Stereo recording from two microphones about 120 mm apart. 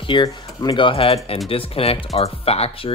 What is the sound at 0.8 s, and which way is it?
Speech, 55° left (ahead or behind).